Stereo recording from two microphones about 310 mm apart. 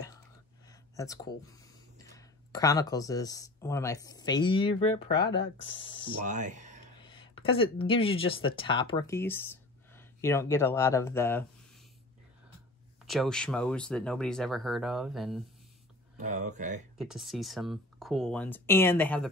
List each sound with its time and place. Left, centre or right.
0.7 s a sound: centre
2.1 s speech: centre
6.2 s speech: right
7.0 s speech: centre
13.0 s speech: centre
16.2 s speech: right
17.0 s speech: centre